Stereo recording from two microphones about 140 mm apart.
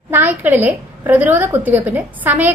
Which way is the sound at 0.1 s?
10° right (ahead or behind).